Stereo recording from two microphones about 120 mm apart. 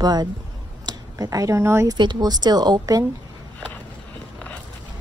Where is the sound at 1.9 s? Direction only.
35° right (ahead or behind).